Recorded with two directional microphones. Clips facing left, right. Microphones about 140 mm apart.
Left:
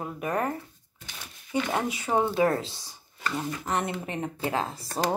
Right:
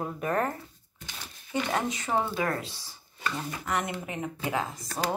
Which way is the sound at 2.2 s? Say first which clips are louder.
Left 6 dB; 25° left (ahead or behind).